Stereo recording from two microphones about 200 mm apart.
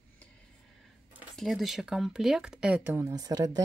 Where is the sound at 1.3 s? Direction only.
Centre (ahead or behind).